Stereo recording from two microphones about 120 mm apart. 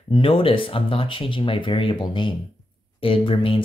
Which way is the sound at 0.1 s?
45° left (ahead or behind).